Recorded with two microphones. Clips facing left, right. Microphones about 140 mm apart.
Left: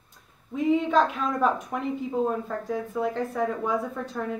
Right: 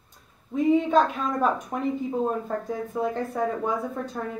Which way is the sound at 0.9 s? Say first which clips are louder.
Right 1 dB; 15° right (ahead or behind).